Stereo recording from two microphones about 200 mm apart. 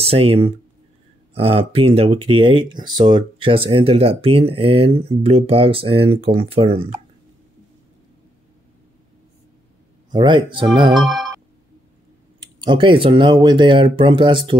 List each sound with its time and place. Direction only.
0.0 s speech: 30° right (ahead or behind)
10.1 s speech: 25° right (ahead or behind)
11.0 s speech: centre (ahead or behind)
12.4 s speech: 20° right (ahead or behind)